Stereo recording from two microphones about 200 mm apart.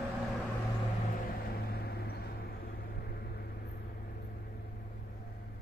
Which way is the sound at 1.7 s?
50° left (ahead or behind).